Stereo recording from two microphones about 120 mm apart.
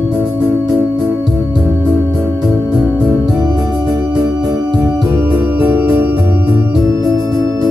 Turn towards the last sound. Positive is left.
turn(degrees=-20)  # may be behind; listen again after turning